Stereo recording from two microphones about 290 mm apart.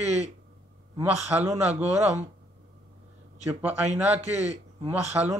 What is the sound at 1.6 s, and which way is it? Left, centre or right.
Speech, right.